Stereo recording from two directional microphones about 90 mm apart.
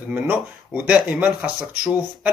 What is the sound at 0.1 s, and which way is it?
Speech, 15° right (ahead or behind).